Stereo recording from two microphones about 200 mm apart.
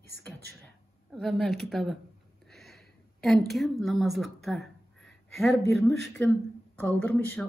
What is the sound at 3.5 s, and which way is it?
Speech, centre (ahead or behind).